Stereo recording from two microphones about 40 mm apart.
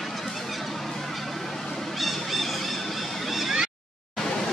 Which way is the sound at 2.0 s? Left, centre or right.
Centre.